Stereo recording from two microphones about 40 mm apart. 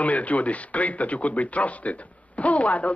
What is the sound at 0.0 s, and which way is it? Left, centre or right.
A man's voice, left.